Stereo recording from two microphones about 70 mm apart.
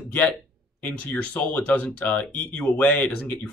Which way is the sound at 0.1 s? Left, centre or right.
Centre.